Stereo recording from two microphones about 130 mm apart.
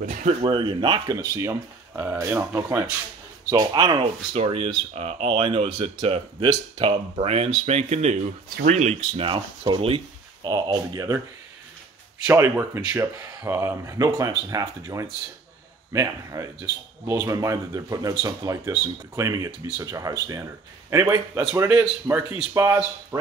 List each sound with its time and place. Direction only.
0.4 s speech: 40° right (ahead or behind)
1.1 s speech: 20° right (ahead or behind)
4.0 s speech: 50° right (ahead or behind)
10.4 s speech: 30° right (ahead or behind)
12.3 s speech: 20° right (ahead or behind)